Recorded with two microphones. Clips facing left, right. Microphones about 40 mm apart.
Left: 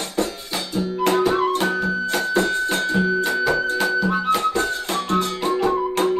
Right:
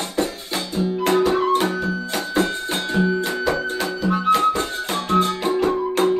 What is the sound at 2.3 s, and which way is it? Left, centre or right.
Music, centre.